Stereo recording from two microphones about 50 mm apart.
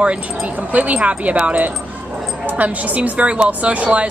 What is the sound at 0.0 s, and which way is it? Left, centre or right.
Speech, right.